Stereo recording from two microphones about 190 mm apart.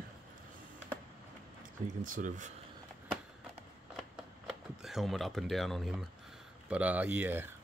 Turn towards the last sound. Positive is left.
turn(degrees=-10)  # may be behind; listen again after turning